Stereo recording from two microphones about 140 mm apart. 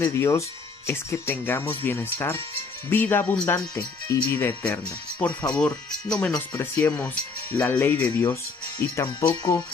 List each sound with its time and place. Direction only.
0.0 s speech: 20° left (ahead or behind)
9.0 s speech: 30° left (ahead or behind)